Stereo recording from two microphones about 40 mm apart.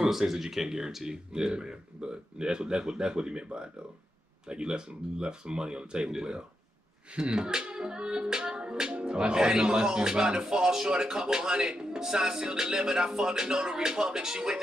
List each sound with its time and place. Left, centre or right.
0.0 s speech: centre
4.5 s speech: right
10.4 s music: centre